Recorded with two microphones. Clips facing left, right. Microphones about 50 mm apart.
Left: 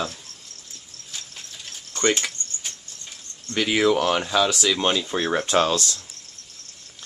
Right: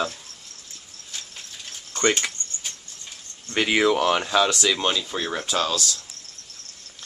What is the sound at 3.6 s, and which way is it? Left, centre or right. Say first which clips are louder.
Speech: even; centre.